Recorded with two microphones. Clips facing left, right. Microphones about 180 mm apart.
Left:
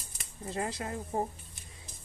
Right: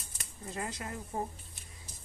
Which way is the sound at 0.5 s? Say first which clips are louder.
Left 4 dB; 30° left (ahead or behind).